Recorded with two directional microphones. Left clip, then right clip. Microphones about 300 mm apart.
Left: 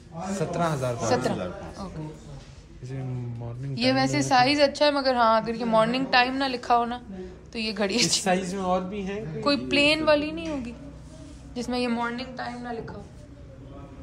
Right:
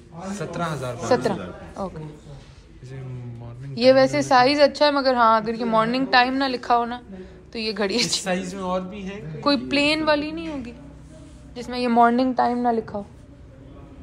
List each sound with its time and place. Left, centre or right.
0.3 s speech: left
0.9 s a woman's voice: centre
3.7 s a woman's voice: centre
8.2 s speech: left
9.4 s a woman's voice: centre
11.9 s a woman's voice: centre